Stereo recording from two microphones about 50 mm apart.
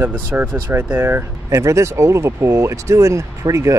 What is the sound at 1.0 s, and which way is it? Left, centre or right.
Speech, right.